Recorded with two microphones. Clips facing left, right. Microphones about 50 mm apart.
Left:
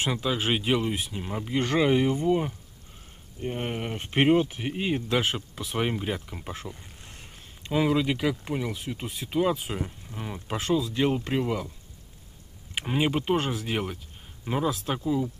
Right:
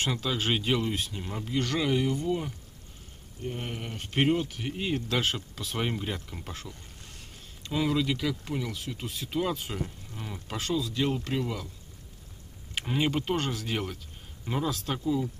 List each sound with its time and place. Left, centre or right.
0.0 s speech: centre
12.7 s speech: centre